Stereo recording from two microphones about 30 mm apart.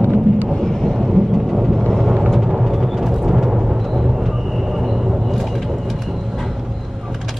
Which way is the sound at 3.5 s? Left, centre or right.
Centre.